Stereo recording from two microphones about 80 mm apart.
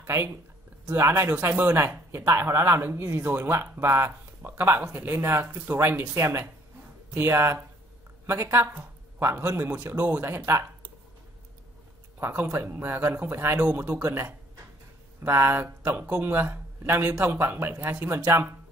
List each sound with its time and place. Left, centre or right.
0.0 s speech: right
12.2 s speech: right
15.2 s speech: right